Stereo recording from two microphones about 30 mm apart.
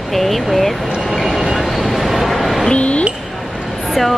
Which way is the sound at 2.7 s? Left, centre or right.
Left.